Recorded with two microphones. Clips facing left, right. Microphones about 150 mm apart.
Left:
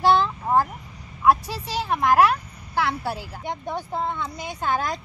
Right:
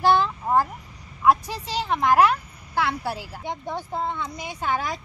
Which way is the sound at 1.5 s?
15° right (ahead or behind).